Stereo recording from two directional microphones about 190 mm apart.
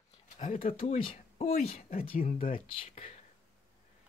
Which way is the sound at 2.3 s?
45° left (ahead or behind).